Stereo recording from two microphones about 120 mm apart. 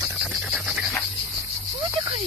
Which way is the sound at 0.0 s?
5° right (ahead or behind).